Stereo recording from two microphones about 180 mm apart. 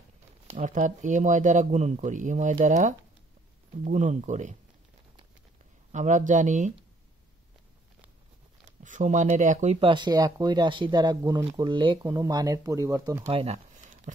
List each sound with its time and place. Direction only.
0.5 s speech: 45° right (ahead or behind)
5.9 s speech: 45° right (ahead or behind)
8.8 s speech: 45° right (ahead or behind); by 13.3 s 15° right (ahead or behind)
13.3 s speech: 30° right (ahead or behind)
13.7 s a sound: 45° right (ahead or behind)